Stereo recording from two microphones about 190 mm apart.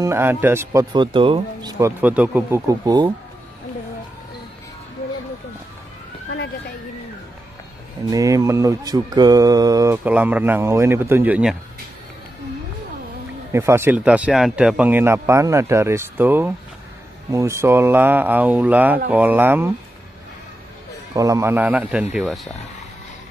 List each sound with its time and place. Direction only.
0.0 s speech: 10° right (ahead or behind)
0.9 s speech: 25° right (ahead or behind)
8.1 s speech: 15° right (ahead or behind)
10.0 s speech: 10° right (ahead or behind)
13.5 s speech: 15° right (ahead or behind)
21.1 s speech: 15° right (ahead or behind); by 22.5 s centre (ahead or behind)